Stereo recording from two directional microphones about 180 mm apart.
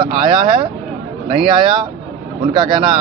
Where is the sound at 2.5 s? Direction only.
25° right (ahead or behind).